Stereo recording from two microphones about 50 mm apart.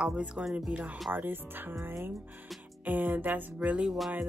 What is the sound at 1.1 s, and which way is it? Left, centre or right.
Speech, right.